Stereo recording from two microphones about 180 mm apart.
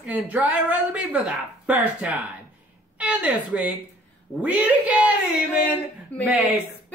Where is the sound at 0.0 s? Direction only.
10° right (ahead or behind).